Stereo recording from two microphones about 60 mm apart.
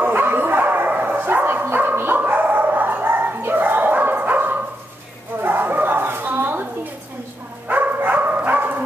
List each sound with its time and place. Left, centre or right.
0.0 s bow-wow: right
7.6 s dog: right